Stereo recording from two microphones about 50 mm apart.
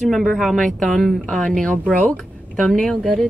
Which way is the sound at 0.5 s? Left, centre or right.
Centre.